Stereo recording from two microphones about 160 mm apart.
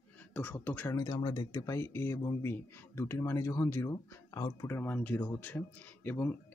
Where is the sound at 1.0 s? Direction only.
25° left (ahead or behind).